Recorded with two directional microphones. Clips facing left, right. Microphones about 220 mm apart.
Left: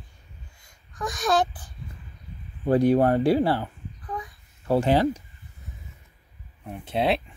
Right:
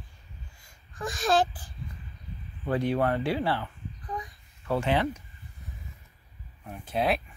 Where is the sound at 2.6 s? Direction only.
40° left (ahead or behind).